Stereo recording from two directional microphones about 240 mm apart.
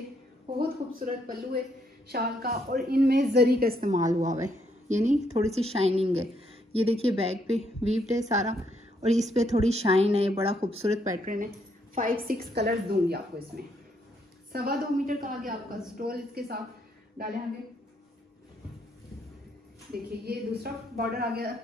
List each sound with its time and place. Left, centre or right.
0.6 s a woman's voice: right
11.9 s a woman's voice: right
19.9 s a woman's voice: right